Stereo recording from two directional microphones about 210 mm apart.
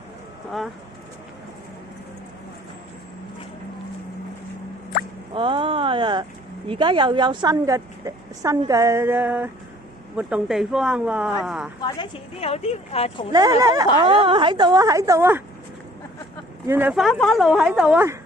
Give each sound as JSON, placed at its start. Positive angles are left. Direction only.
{"t": 5.3, "sound": "a sound", "side_deg": -25}
{"t": 6.7, "sound": "a woman's voice", "side_deg": -25}
{"t": 11.8, "sound": "speech", "side_deg": 25}
{"t": 13.3, "sound": "a woman's voice", "side_deg": -20}
{"t": 16.6, "sound": "a woman's voice", "side_deg": -10}